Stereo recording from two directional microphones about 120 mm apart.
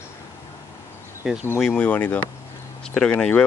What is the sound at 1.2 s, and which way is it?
Speech, 5° right (ahead or behind).